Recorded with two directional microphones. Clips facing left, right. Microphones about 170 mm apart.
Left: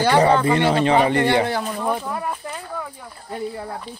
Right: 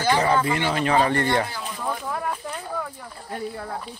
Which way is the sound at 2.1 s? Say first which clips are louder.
Left 1 dB; 5° left (ahead or behind).